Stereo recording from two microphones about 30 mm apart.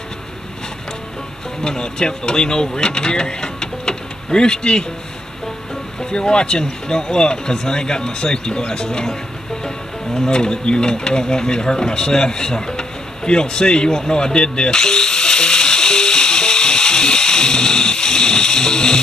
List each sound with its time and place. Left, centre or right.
1.6 s speech: left
5.9 s speech: left
10.1 s mechanisms: left